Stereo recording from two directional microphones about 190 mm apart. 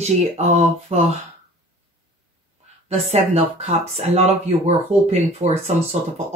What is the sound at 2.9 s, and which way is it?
Speech, 35° right (ahead or behind).